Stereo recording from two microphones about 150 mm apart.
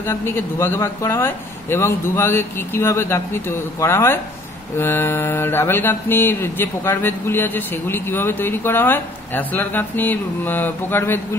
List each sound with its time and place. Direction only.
0.0 s mantra: 15° left (ahead or behind)